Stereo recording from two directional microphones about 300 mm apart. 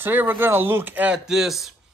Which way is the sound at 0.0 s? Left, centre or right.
Centre.